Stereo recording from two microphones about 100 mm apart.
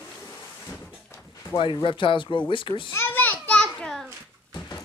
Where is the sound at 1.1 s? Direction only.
25° left (ahead or behind).